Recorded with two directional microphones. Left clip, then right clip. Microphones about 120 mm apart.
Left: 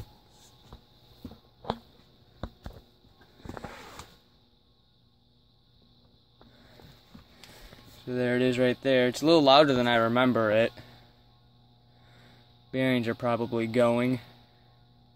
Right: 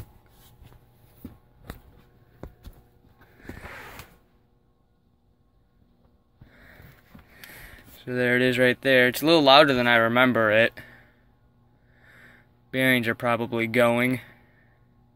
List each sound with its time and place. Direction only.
7.3 s speech: 15° left (ahead or behind)
12.7 s speech: 20° left (ahead or behind)